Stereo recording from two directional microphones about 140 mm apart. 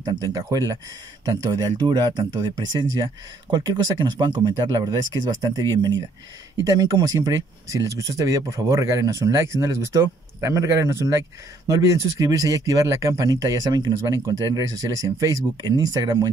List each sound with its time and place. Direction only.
0.0 s speech: 30° right (ahead or behind)